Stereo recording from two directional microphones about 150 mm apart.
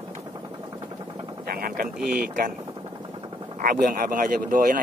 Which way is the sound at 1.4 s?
85° right.